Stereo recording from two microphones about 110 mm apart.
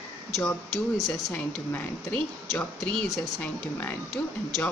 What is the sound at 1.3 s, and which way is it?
A woman's voice, 15° left (ahead or behind).